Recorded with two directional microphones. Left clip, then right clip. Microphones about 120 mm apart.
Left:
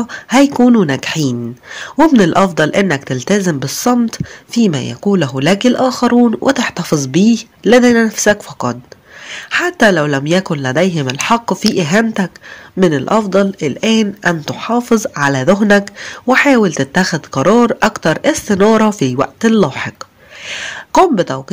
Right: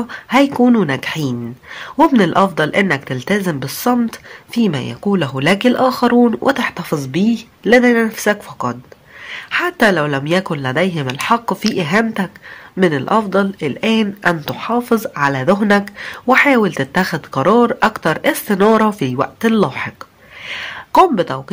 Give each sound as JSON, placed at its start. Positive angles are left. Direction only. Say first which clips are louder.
{"t": 0.0, "sound": "a woman's voice", "louder": "left 2 dB", "side_deg": 35}
{"t": 20.4, "sound": "a sound", "louder": "left 2 dB", "side_deg": 35}
{"t": 21.0, "sound": "speech", "louder": "left 1 dB", "side_deg": 30}